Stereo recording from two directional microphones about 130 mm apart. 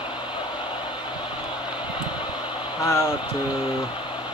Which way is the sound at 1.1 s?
40° left (ahead or behind).